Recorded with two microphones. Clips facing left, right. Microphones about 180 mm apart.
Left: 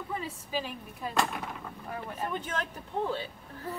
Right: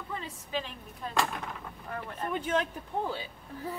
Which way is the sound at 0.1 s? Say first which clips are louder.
Left 1 dB; 5° left (ahead or behind).